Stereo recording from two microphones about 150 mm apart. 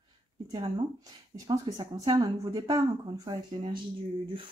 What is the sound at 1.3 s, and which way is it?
Speech, 25° right (ahead or behind).